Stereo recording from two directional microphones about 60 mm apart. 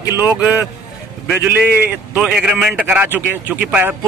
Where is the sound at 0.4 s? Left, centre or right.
Right.